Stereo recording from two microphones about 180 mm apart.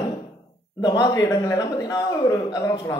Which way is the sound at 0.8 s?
20° left (ahead or behind).